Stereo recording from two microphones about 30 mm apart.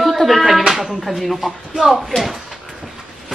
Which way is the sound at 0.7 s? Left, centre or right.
Centre.